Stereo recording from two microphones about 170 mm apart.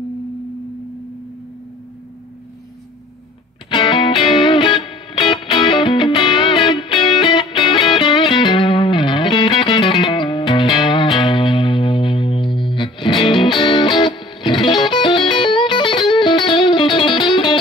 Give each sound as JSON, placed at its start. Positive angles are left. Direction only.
{"t": 3.7, "sound": "music", "side_deg": 30}